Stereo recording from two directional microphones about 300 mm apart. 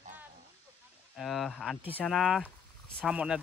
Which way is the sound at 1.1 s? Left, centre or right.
Centre.